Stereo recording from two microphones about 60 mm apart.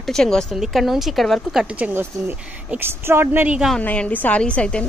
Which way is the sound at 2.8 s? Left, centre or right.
Right.